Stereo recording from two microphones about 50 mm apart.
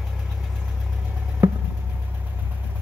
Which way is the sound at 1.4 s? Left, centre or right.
Right.